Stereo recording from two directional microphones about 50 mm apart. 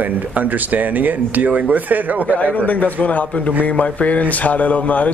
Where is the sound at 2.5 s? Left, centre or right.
Left.